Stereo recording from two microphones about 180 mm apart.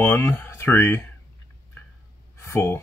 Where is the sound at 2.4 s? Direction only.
15° left (ahead or behind).